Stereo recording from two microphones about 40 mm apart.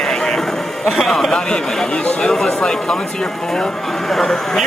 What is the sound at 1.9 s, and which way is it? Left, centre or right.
Speech, left.